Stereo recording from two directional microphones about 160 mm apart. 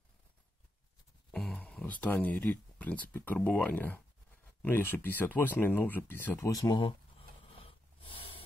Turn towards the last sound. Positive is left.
turn(degrees=25)  # may be behind; listen again after turning